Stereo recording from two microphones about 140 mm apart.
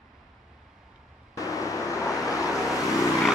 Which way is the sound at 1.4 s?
25° left (ahead or behind).